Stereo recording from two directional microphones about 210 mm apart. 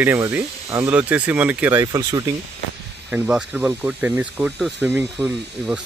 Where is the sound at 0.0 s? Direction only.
10° right (ahead or behind).